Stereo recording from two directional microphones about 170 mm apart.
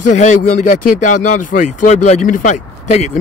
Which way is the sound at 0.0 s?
45° left (ahead or behind).